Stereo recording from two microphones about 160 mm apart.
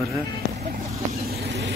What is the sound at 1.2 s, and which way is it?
Vehicle, 85° right.